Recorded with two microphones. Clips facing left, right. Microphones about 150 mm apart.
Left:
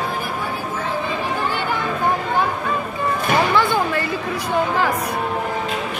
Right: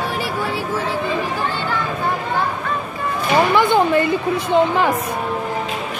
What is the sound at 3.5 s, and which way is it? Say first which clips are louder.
Speech: right 4 dB; 20° right (ahead or behind).